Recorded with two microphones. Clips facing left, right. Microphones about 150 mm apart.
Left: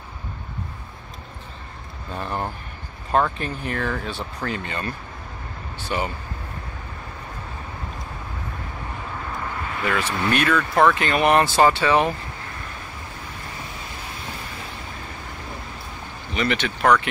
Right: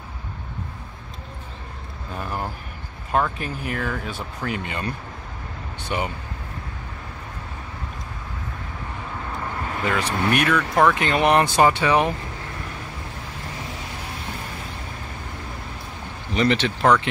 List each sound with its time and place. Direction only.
2.1 s speech: 5° right (ahead or behind)
9.8 s speech: 20° right (ahead or behind)
16.3 s speech: 30° right (ahead or behind)